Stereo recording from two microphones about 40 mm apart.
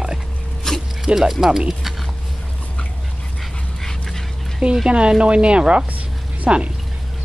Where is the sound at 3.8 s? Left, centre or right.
Centre.